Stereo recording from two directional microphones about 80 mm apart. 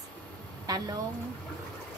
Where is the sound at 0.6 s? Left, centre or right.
Right.